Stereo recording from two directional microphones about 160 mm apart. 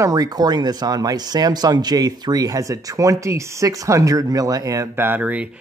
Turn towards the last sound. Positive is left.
turn(degrees=-10)  # may be behind; listen again after turning